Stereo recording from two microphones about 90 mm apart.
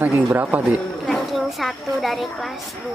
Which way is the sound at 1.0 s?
Centre (ahead or behind).